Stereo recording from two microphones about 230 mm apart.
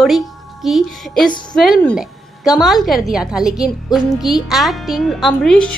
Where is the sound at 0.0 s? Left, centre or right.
Centre.